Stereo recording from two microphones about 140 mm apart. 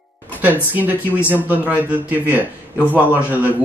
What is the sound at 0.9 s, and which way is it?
Speech, 15° left (ahead or behind).